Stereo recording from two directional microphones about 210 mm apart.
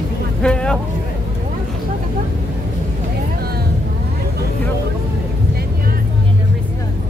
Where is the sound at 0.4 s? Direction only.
5° left (ahead or behind).